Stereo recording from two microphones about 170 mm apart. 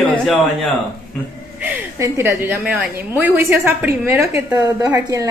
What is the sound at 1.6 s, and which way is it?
A woman's voice, 15° right (ahead or behind).